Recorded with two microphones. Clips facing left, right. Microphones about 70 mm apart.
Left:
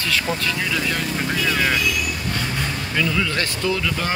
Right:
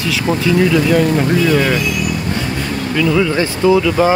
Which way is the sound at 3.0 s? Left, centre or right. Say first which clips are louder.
Right 10 dB; centre.